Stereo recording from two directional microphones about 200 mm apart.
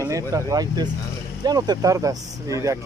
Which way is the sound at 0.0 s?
15° right (ahead or behind).